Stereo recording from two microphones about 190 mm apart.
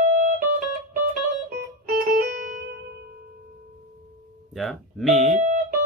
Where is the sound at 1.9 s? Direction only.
50° right (ahead or behind).